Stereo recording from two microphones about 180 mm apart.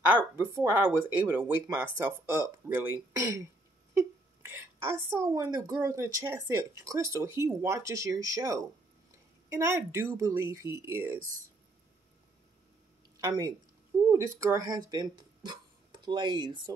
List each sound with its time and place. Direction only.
0.1 s a woman's voice: 10° right (ahead or behind)
13.2 s speech: 20° right (ahead or behind)